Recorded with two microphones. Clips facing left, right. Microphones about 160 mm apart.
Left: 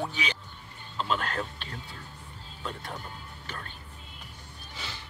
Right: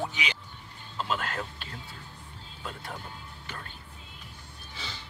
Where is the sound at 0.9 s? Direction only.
5° right (ahead or behind).